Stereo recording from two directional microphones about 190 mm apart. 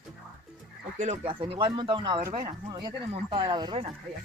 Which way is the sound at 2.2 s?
45° right (ahead or behind).